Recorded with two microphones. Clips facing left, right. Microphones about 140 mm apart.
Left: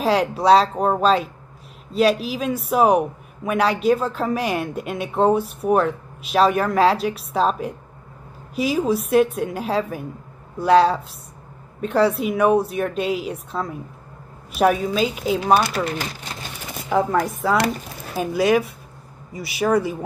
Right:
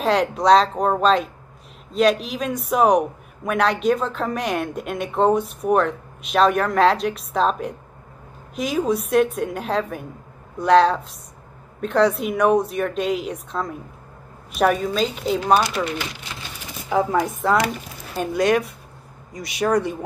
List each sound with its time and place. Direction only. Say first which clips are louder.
0.0 s a man's voice: even; 5° left (ahead or behind)
15.7 s speech: left 1 dB; 40° left (ahead or behind)
16.9 s a man's voice: even; centre (ahead or behind)